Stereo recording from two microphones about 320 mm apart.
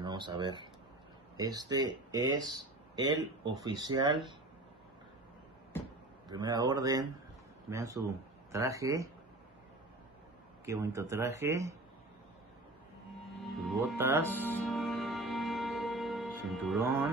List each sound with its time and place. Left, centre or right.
0.0 s speech: centre
6.2 s speech: centre
10.6 s speech: centre
13.7 s music: centre
14.2 s music: centre